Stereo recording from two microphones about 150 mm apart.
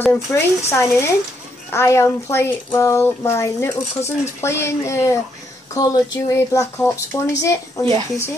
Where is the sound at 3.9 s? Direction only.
50° left (ahead or behind).